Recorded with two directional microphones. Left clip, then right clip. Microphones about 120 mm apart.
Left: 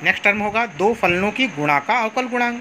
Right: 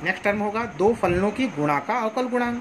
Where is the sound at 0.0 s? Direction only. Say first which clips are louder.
Left 6 dB; 35° left (ahead or behind).